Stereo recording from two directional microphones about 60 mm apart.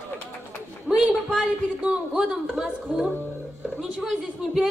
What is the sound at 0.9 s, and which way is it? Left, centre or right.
Speech, centre.